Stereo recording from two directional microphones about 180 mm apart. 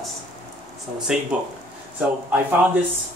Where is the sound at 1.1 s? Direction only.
5° right (ahead or behind).